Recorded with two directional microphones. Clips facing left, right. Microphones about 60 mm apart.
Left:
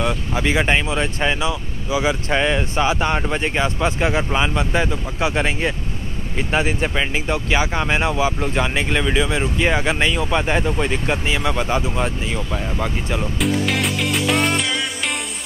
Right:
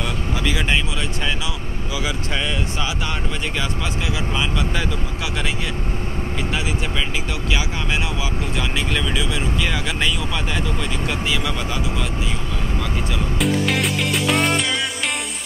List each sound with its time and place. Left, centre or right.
0.0 s speech: left
13.4 s music: centre